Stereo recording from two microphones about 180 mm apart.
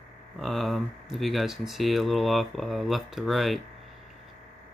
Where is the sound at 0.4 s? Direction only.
Centre (ahead or behind).